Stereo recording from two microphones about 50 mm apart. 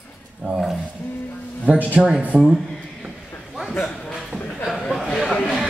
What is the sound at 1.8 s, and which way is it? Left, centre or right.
Speech, right.